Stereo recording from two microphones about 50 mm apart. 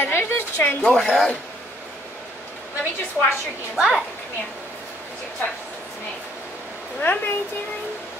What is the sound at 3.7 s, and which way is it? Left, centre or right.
Speech, centre.